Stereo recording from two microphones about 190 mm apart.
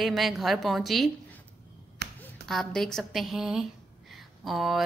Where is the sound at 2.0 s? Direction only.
60° right (ahead or behind).